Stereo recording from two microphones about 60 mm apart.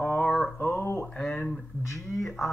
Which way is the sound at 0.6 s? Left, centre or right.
Left.